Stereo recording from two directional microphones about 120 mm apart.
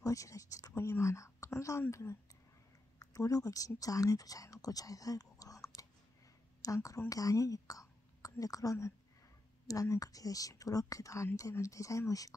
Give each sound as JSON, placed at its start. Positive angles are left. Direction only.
{"t": 0.0, "sound": "a woman's voice", "side_deg": 30}